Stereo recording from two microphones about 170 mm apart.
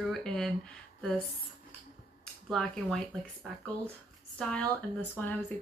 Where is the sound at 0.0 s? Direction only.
Centre (ahead or behind).